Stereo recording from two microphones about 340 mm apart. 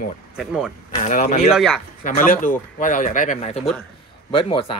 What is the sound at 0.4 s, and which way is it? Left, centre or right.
Speech, centre.